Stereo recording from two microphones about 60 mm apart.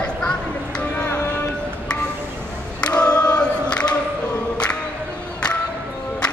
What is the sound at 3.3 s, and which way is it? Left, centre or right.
Choir, centre.